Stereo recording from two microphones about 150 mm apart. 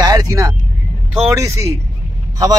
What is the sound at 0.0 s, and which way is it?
Vehicle, 25° right (ahead or behind).